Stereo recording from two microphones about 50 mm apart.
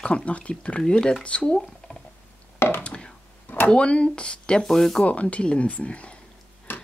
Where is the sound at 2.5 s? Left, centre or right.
Left.